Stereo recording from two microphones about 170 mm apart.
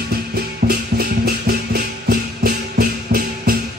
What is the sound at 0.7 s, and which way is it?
Music, 60° right (ahead or behind).